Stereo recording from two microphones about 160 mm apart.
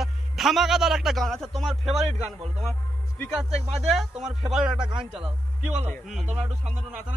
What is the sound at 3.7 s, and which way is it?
Speech, centre (ahead or behind).